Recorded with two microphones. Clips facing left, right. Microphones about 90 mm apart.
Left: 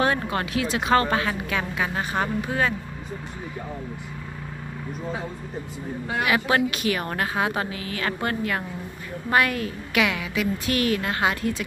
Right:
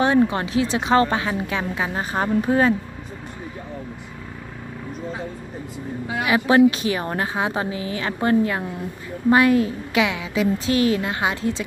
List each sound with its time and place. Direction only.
0.0 s speech: 20° right (ahead or behind)
6.2 s speech: 25° right (ahead or behind)